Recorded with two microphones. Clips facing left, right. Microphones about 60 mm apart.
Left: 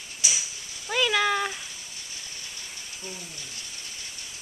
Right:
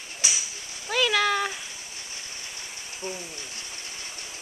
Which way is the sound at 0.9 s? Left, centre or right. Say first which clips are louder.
Right 1 dB; centre.